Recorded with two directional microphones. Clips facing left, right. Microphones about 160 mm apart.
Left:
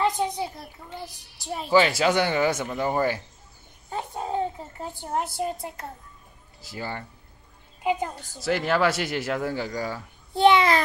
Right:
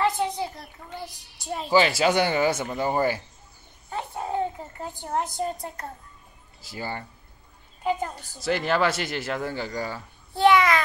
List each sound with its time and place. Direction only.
1.7 s speech: 5° right (ahead or behind)
3.9 s a sound: 15° left (ahead or behind)
5.0 s speech: 5° left (ahead or behind)
7.8 s a child's voice: 15° left (ahead or behind)
8.4 s speech: 5° left (ahead or behind)
10.3 s a child's voice: 25° left (ahead or behind)